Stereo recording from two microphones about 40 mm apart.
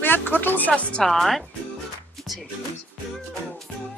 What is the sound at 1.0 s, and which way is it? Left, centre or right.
Speech, centre.